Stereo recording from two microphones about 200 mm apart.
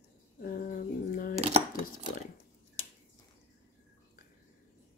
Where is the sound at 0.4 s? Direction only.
45° left (ahead or behind).